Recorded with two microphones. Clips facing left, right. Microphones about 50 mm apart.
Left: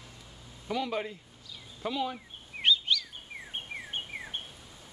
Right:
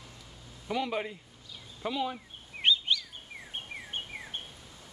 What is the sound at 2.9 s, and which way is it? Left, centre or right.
Bird vocalization, right.